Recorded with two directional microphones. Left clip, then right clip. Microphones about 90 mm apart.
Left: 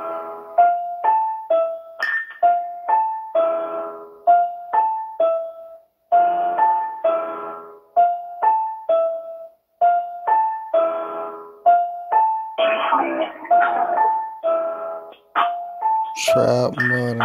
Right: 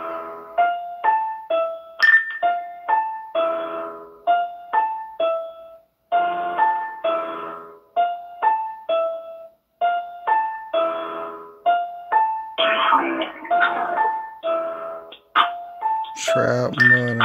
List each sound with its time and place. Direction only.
0.0 s music: 10° right (ahead or behind)
3.3 s music: 5° right (ahead or behind)
7.1 s music: 5° right (ahead or behind)
16.2 s music: 20° left (ahead or behind)